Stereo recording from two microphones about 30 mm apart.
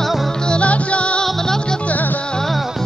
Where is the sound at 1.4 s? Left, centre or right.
Centre.